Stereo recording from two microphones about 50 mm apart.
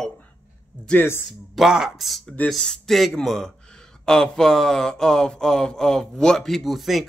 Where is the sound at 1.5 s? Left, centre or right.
Centre.